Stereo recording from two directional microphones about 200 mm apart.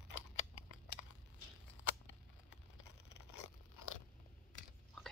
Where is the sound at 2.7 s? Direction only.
80° left.